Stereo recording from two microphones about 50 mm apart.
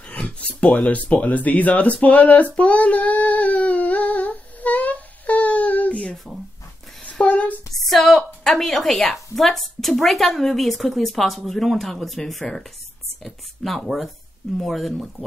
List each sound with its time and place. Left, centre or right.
0.2 s speech: left
2.5 s child singing: left
7.0 s a sound: left
7.7 s a woman's voice: centre